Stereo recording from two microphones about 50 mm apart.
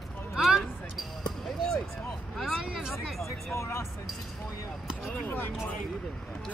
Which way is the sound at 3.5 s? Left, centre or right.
Left.